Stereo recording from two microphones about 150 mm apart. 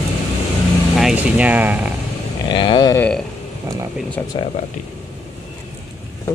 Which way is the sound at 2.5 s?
30° left (ahead or behind).